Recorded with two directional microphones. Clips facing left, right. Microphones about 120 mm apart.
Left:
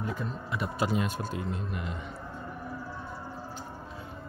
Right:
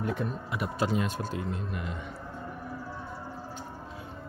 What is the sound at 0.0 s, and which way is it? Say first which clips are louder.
Speech: right 3 dB; 65° right (ahead or behind).